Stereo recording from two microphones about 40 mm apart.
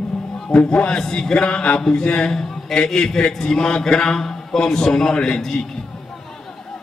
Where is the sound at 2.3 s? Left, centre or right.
Centre.